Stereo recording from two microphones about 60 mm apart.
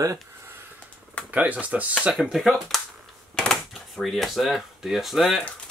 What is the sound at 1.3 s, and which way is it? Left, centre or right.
Speech, right.